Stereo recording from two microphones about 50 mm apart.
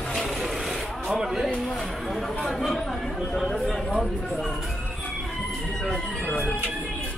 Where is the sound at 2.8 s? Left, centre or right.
Centre.